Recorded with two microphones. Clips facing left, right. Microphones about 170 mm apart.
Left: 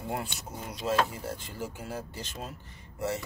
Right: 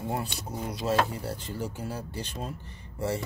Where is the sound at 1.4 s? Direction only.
Centre (ahead or behind).